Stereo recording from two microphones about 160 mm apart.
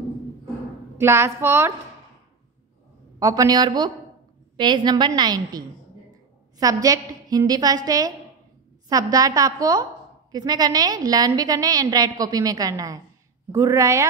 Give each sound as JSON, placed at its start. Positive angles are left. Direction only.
{"t": 0.9, "sound": "a woman's voice", "side_deg": -15}
{"t": 3.2, "sound": "a woman's voice", "side_deg": -20}
{"t": 6.6, "sound": "a woman's voice", "side_deg": -20}